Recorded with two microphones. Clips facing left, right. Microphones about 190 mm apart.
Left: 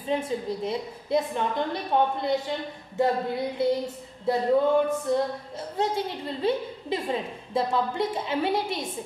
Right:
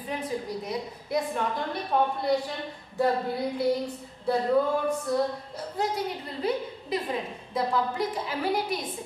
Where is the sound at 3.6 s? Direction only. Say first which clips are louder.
Left 2 dB; 20° left (ahead or behind).